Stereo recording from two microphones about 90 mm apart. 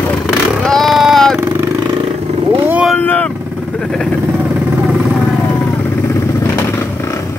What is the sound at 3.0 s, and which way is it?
Vehicle, 15° left (ahead or behind).